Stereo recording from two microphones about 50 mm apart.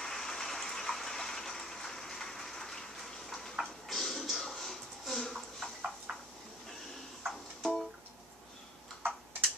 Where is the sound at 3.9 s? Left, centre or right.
Centre.